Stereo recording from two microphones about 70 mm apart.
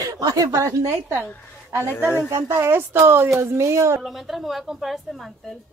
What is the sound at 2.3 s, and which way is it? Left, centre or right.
Speech, right.